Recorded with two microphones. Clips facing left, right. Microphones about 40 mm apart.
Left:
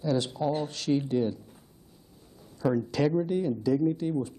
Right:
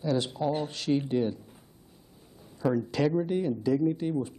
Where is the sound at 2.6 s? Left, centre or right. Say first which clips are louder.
Even; centre.